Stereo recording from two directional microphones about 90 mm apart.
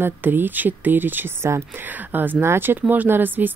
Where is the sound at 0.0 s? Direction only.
20° right (ahead or behind).